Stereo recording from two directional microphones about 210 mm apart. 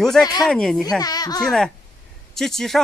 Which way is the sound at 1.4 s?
5° left (ahead or behind).